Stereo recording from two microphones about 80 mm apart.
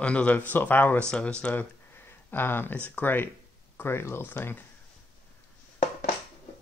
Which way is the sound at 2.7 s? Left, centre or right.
Centre.